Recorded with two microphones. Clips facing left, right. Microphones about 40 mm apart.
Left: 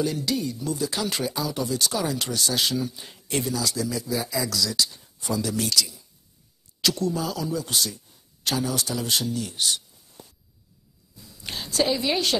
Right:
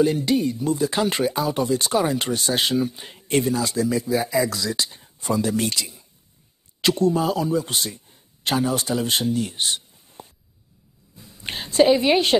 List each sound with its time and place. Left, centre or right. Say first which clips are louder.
0.0 s a man's voice: right 7 dB; right